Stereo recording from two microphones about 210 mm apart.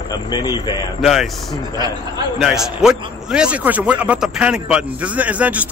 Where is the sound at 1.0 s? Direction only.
Centre (ahead or behind).